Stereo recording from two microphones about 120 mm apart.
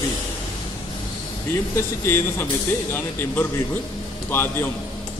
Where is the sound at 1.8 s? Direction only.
20° left (ahead or behind).